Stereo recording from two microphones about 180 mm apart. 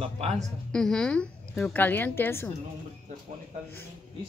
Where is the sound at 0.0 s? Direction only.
35° right (ahead or behind).